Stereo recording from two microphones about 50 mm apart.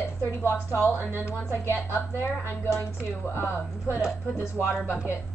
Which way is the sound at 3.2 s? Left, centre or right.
Left.